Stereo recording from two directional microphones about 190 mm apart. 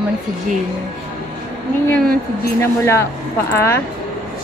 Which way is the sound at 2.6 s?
15° left (ahead or behind).